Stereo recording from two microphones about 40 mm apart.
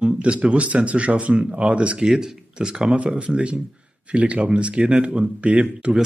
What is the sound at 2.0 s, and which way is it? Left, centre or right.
Speech, centre.